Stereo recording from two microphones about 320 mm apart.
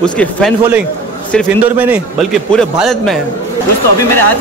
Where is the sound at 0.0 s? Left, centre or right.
Centre.